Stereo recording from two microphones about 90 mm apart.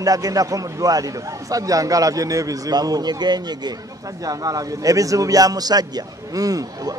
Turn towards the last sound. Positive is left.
turn(degrees=-40)  # may be behind; listen again after turning